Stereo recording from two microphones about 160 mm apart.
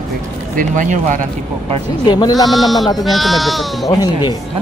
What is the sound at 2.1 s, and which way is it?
Speech, 25° left (ahead or behind).